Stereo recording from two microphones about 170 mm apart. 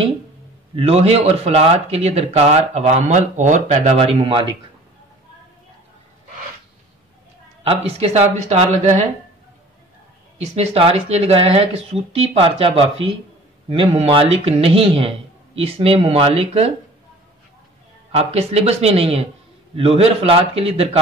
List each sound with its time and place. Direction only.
0.7 s speech: 35° right (ahead or behind)
7.6 s speech: 40° right (ahead or behind)
10.4 s speech: 40° right (ahead or behind)
18.1 s speech: 40° right (ahead or behind)